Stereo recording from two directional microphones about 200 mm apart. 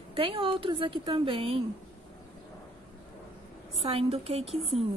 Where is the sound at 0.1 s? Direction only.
25° right (ahead or behind).